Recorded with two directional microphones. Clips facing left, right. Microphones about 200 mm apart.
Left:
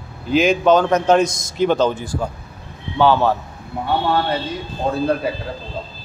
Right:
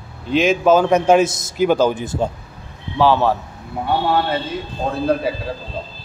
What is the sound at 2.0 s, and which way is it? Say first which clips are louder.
Speech: right 3 dB; 25° right (ahead or behind).